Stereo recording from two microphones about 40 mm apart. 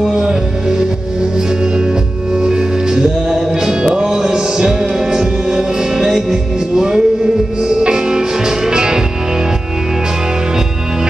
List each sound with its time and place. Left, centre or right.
0.0 s music: centre
2.3 s music: centre